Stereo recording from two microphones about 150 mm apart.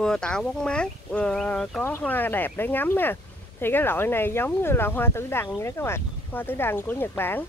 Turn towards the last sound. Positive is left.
turn(degrees=15)  # may be behind; listen again after turning